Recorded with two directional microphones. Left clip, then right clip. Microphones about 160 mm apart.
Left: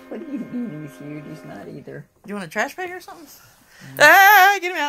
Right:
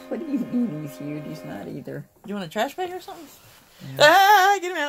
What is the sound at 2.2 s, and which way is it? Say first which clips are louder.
A woman's voice: left 2 dB; 5° left (ahead or behind).